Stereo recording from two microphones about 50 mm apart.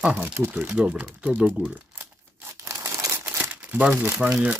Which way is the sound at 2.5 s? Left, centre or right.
Right.